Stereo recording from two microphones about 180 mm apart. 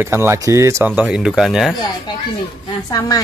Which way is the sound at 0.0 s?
15° right (ahead or behind).